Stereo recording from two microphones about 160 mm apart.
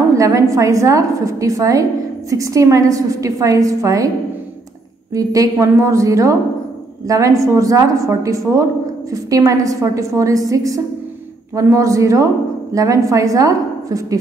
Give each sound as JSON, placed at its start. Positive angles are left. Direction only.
{"t": 0.1, "sound": "a woman's voice", "side_deg": -20}
{"t": 5.1, "sound": "a woman's voice", "side_deg": -20}